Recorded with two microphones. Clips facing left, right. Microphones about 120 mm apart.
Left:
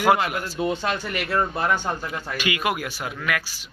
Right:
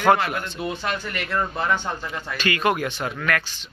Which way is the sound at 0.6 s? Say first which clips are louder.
Left 4 dB; 25° left (ahead or behind).